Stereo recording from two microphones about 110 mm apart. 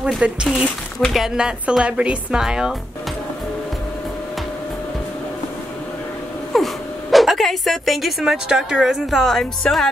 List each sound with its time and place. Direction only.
0.2 s speech: 10° right (ahead or behind)
6.5 s speech: centre (ahead or behind)